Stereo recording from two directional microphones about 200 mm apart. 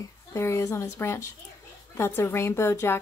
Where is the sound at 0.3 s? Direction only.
15° left (ahead or behind).